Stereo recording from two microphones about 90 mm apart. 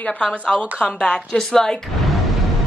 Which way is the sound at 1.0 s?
10° left (ahead or behind).